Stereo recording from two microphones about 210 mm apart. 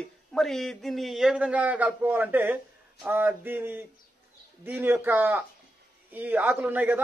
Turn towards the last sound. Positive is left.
turn(degrees=-10)  # may be behind; listen again after turning